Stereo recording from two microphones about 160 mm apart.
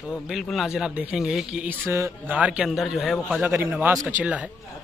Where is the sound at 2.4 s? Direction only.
5° right (ahead or behind).